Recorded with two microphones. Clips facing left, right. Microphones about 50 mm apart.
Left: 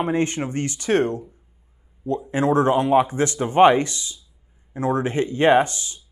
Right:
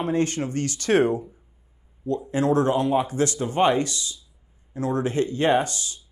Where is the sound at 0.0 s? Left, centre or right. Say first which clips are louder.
Left 2 dB; left.